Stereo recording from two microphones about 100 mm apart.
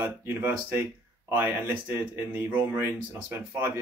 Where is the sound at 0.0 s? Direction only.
20° right (ahead or behind).